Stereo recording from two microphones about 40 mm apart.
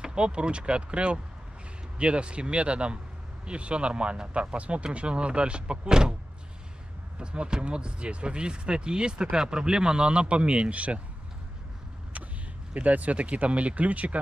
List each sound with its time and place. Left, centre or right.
0.0 s speech: right
7.2 s speech: right
12.7 s speech: right